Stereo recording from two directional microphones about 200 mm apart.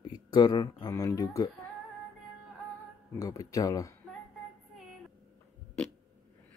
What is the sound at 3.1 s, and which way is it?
Speech, 15° left (ahead or behind).